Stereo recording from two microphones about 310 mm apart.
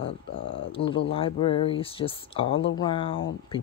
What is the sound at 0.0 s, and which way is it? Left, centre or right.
Speech, centre.